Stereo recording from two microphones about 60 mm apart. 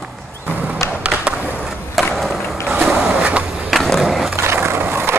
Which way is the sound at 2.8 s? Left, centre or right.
Centre.